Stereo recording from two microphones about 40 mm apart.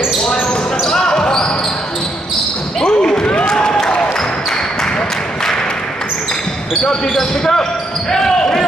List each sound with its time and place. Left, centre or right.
0.2 s basketball bounce: left
2.8 s a sound: centre
3.8 s basketball bounce: left
7.2 s speech: centre
8.1 s basketball bounce: centre